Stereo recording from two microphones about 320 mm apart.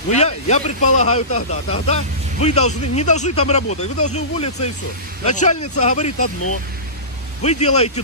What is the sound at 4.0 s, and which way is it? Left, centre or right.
Speech, left.